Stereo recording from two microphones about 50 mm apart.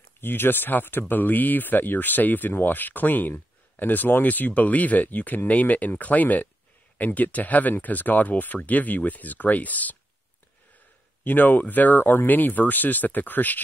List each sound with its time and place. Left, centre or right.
0.2 s speech: left
11.2 s speech: left